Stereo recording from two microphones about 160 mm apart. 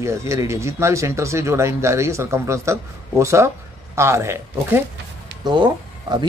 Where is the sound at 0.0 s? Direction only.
20° right (ahead or behind).